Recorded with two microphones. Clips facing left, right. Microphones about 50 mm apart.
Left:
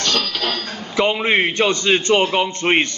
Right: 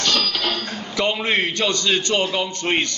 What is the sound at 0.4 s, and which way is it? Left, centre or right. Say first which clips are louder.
A man's voice: left 1 dB; left.